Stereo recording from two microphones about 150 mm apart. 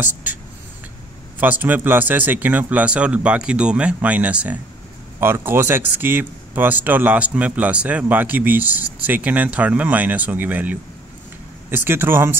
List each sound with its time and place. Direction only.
0.0 s speech: 10° right (ahead or behind)
1.4 s speech: 10° right (ahead or behind)